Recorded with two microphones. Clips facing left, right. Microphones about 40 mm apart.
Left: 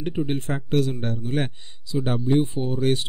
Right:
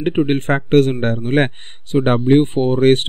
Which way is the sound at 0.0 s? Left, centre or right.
Right.